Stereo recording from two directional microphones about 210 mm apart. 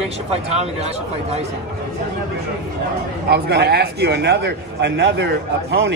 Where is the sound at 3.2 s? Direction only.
50° right (ahead or behind).